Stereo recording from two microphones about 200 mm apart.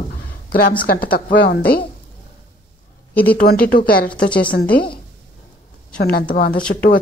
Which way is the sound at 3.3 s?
50° left (ahead or behind).